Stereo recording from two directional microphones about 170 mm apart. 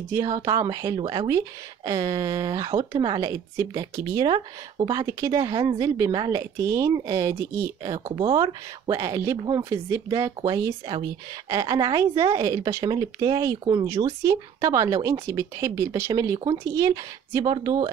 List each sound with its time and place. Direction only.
0.5 s a woman's voice: 20° right (ahead or behind)